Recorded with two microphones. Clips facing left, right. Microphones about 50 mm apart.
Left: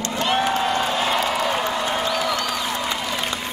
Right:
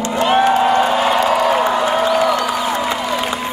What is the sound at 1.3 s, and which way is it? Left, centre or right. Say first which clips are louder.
Applause: right 8 dB; centre.